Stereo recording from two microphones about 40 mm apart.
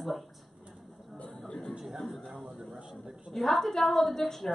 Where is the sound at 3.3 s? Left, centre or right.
Centre.